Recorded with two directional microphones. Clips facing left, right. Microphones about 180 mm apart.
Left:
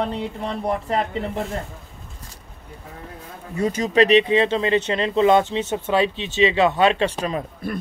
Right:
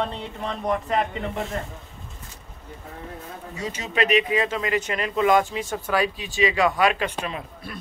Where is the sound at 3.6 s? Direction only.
45° left (ahead or behind).